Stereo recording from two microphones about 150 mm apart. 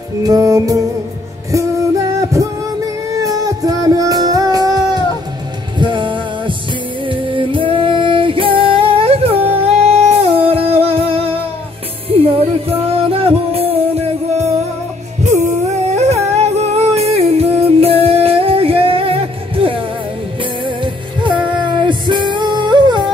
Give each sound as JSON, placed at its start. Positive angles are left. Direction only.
{"t": 0.2, "sound": "music", "side_deg": -25}
{"t": 3.2, "sound": "music", "side_deg": -25}
{"t": 12.6, "sound": "music", "side_deg": -40}